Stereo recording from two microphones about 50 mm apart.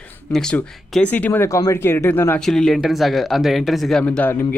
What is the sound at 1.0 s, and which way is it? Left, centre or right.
Speech, left.